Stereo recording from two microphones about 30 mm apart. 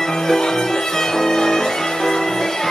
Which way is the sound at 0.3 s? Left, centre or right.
Centre.